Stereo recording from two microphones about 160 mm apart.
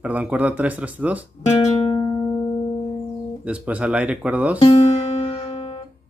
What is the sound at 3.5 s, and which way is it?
Speech, 10° right (ahead or behind).